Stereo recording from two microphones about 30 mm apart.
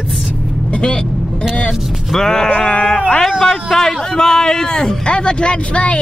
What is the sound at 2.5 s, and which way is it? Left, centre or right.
Speech, left.